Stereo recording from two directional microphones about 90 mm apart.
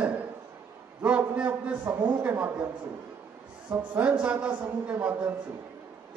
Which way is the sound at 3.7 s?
15° right (ahead or behind).